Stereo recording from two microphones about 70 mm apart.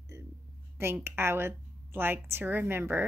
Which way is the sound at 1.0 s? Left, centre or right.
Right.